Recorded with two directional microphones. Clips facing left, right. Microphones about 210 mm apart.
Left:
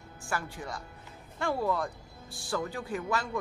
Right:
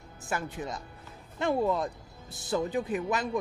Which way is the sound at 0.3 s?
20° right (ahead or behind).